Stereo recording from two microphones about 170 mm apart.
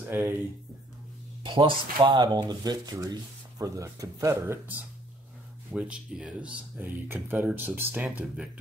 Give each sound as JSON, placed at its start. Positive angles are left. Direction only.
{"t": 0.1, "sound": "speech", "side_deg": -15}
{"t": 1.4, "sound": "speech", "side_deg": -30}